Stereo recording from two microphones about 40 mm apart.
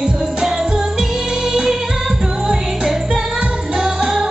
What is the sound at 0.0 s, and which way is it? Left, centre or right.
Music, centre.